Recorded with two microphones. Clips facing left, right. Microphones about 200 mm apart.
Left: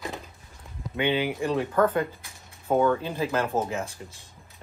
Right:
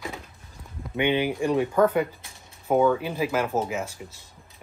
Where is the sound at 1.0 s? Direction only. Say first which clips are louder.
Right 2 dB; 15° right (ahead or behind).